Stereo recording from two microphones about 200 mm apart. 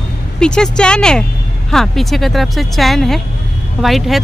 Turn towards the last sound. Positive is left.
turn(degrees=0)  # may be behind; listen again after turning